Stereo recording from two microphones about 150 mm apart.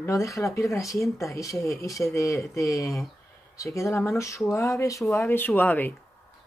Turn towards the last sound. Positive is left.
turn(degrees=10)  # may be behind; listen again after turning